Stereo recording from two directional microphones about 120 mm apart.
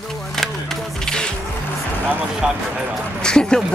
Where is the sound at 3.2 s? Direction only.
5° left (ahead or behind).